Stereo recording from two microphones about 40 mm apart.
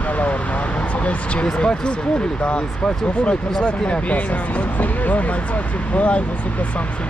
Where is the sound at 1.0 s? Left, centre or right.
Left.